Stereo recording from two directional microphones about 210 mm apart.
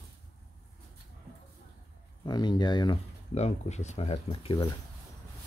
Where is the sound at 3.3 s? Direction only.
30° left (ahead or behind).